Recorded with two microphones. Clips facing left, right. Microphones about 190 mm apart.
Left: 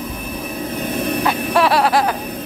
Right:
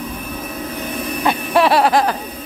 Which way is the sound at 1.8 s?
5° left (ahead or behind).